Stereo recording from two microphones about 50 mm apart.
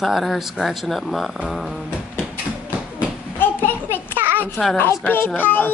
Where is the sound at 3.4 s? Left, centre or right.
Left.